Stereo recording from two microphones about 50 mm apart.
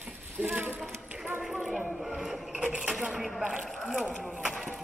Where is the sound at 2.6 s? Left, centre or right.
Centre.